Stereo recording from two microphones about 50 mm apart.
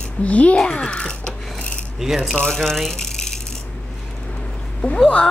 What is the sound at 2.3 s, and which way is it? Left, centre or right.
Speech, centre.